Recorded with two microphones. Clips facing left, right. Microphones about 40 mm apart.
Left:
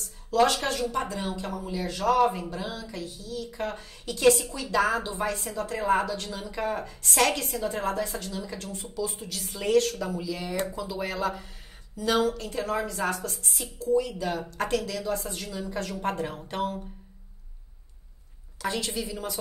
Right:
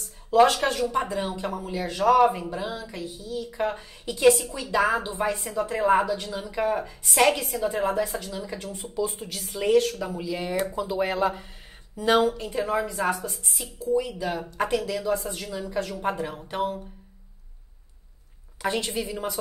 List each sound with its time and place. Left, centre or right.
0.3 s speech: centre
6.2 s a woman's voice: centre
8.8 s a woman's voice: right
10.5 s a woman's voice: centre
10.8 s a woman's voice: right
18.6 s speech: right